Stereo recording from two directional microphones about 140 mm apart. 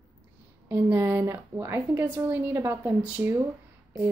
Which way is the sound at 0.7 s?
15° right (ahead or behind).